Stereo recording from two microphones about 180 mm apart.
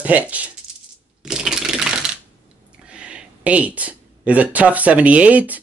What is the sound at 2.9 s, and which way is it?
Speech, 5° right (ahead or behind).